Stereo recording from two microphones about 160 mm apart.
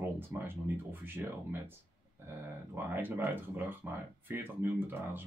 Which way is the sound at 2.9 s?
15° right (ahead or behind).